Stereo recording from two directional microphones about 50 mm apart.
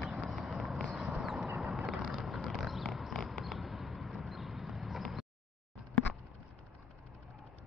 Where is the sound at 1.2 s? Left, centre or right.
Centre.